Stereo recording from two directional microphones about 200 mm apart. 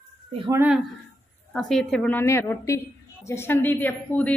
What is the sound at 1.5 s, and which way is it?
Speech, centre (ahead or behind).